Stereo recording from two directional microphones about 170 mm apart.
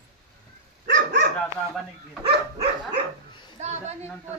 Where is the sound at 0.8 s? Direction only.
90° right.